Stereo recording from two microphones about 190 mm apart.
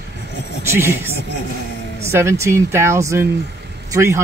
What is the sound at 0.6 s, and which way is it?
Speech, 15° right (ahead or behind).